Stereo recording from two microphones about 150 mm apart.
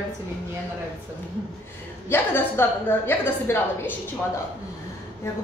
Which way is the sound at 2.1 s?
15° left (ahead or behind).